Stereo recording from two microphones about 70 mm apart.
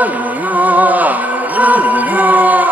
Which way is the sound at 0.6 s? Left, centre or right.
Right.